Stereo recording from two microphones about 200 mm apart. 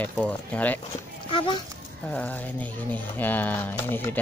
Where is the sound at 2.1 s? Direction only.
5° left (ahead or behind).